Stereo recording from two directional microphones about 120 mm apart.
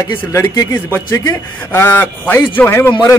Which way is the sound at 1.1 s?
30° left (ahead or behind).